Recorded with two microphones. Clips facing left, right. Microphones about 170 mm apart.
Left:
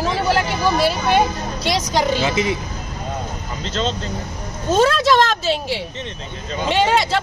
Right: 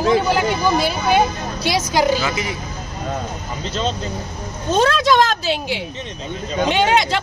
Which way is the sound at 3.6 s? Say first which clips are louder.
Even; 10° right (ahead or behind).